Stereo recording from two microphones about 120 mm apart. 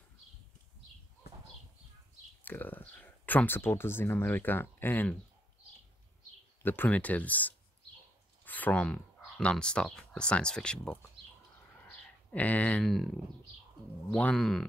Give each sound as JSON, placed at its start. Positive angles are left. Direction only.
{"t": 2.4, "sound": "speech", "side_deg": 15}
{"t": 6.6, "sound": "speech", "side_deg": 15}
{"t": 11.8, "sound": "a sound", "side_deg": 10}
{"t": 12.8, "sound": "speech", "side_deg": 0}
{"t": 14.1, "sound": "speech", "side_deg": 5}